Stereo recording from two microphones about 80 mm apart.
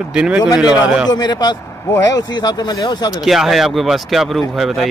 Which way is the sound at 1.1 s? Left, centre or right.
Left.